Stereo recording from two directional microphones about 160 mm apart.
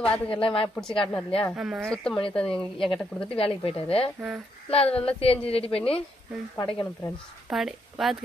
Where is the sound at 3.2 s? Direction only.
35° left (ahead or behind).